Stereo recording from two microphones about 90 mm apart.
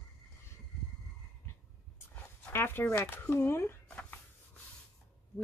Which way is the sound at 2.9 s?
25° left (ahead or behind).